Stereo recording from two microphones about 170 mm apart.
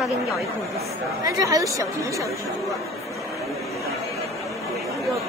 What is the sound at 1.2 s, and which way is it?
A woman's voice, 20° right (ahead or behind).